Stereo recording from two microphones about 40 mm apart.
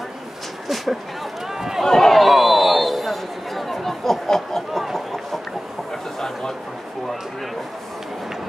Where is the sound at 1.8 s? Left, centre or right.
Centre.